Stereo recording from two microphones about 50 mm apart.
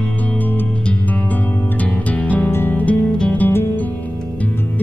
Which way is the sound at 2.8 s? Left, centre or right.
Left.